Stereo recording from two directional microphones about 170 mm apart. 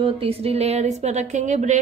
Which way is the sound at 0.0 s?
35° right (ahead or behind).